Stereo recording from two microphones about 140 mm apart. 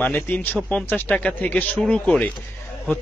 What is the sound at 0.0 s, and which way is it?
A man's voice, 15° left (ahead or behind).